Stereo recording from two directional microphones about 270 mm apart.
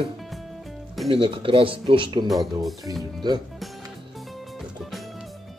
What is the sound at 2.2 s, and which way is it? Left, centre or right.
Speech, centre.